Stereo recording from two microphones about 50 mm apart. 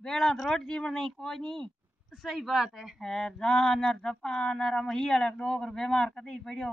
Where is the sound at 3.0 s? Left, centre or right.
Centre.